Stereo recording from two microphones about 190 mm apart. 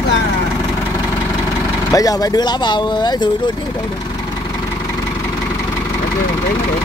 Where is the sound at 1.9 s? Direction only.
20° left (ahead or behind).